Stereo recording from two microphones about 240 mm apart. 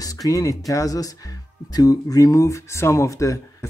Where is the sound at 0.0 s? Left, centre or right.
Centre.